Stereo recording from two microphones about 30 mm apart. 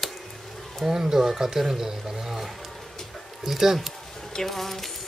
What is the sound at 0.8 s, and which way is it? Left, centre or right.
Speech, centre.